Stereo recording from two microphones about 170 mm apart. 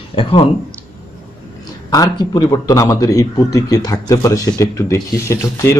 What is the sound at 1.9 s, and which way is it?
A man's voice, 20° left (ahead or behind).